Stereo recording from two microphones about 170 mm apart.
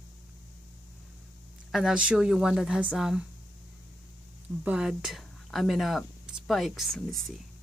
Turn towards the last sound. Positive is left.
turn(degrees=0)  # may be behind; listen again after turning